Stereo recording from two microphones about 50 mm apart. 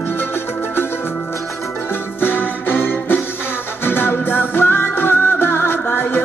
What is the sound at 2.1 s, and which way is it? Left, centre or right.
Music, left.